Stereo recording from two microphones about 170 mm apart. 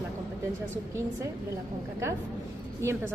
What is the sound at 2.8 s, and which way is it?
Speech, 15° right (ahead or behind).